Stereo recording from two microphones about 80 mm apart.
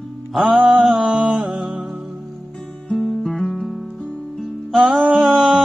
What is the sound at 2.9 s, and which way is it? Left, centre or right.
Guitar, centre.